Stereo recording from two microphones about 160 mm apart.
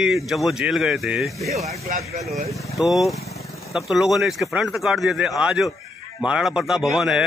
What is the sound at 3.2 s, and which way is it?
Vehicle, 20° left (ahead or behind).